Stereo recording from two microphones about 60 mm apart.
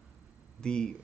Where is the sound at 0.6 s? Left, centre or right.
Centre.